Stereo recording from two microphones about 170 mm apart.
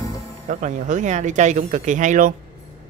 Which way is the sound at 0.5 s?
45° right (ahead or behind).